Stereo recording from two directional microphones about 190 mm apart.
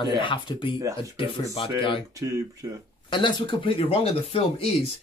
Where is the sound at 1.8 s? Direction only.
25° left (ahead or behind).